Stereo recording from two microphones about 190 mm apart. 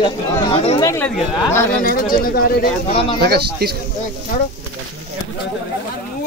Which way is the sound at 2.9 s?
30° left (ahead or behind).